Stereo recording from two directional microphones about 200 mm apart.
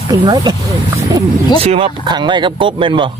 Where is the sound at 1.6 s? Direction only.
30° right (ahead or behind).